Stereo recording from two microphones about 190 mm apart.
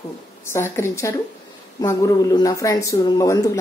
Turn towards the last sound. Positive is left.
turn(degrees=20)  # may be behind; listen again after turning